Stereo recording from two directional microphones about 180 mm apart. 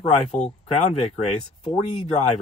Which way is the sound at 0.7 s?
40° left (ahead or behind).